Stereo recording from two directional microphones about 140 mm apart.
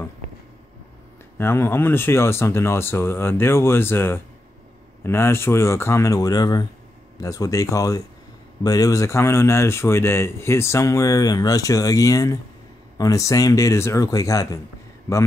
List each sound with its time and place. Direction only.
1.4 s speech: 15° left (ahead or behind)